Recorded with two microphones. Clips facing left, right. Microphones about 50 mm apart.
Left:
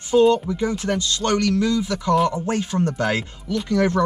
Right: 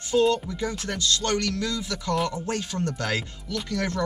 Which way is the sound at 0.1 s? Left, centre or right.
Centre.